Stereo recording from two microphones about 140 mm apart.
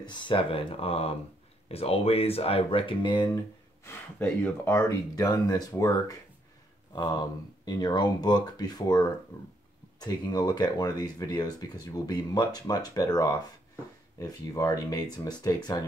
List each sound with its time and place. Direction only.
0.0 s speech: 35° left (ahead or behind)
3.8 s speech: 15° left (ahead or behind)